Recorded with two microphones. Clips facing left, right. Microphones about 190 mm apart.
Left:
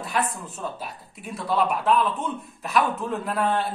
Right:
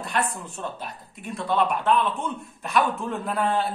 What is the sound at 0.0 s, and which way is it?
A man's voice, 5° left (ahead or behind).